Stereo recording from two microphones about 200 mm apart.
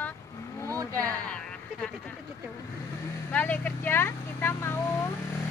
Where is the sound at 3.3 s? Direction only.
10° left (ahead or behind).